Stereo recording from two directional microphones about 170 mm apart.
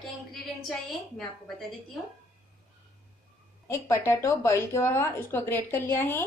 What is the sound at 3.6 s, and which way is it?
A woman's voice, 15° left (ahead or behind).